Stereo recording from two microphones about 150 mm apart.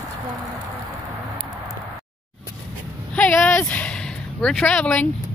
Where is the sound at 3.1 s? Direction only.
10° left (ahead or behind).